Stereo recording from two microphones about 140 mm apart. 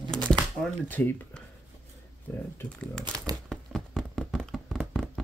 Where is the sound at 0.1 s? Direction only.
5° left (ahead or behind).